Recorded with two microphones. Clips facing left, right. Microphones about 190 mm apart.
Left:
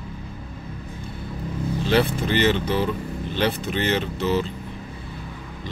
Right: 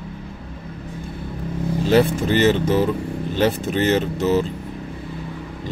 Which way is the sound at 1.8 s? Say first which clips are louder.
Right 5 dB; 45° right (ahead or behind).